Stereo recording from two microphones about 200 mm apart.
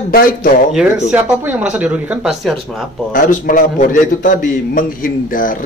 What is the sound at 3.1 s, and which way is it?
Speech, 40° left (ahead or behind).